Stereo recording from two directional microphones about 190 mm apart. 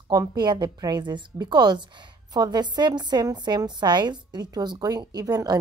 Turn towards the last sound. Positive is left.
turn(degrees=-20)  # may be behind; listen again after turning